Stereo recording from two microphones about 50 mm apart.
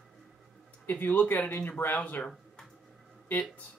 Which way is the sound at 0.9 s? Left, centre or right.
Left.